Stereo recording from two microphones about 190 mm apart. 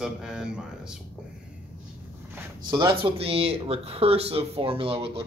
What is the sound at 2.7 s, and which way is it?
Speech, 20° right (ahead or behind).